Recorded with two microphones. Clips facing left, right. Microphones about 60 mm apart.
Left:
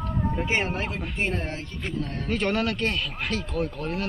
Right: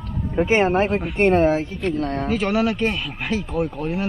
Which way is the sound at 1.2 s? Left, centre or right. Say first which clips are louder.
Right 14 dB; right.